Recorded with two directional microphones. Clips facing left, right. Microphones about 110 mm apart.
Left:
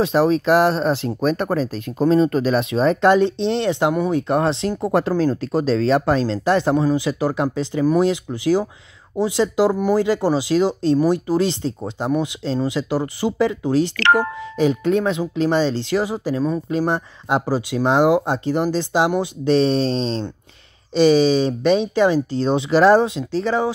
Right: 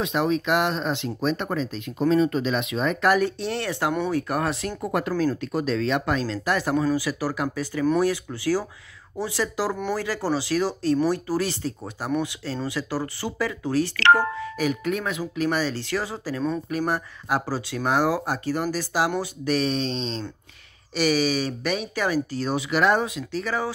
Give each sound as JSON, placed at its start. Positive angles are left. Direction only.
{"t": 0.0, "sound": "speech", "side_deg": 35}